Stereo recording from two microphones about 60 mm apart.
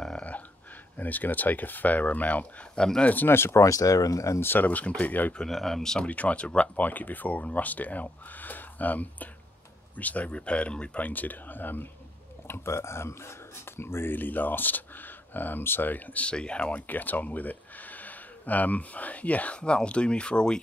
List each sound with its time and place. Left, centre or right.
0.9 s speech: left
3.1 s speech: left
3.6 s speech: left
4.4 s speech: left
5.4 s speech: centre
6.0 s speech: left
12.4 s speech: left; by 16.8 s centre
16.8 s speech: left